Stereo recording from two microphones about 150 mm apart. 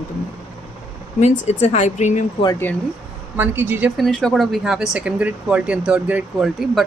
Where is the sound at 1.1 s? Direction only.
50° left (ahead or behind).